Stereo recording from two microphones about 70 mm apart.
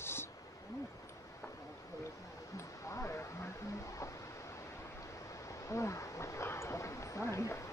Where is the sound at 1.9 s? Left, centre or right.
Left.